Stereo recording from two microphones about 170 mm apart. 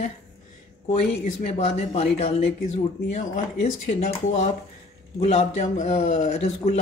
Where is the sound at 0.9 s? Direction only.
40° left (ahead or behind).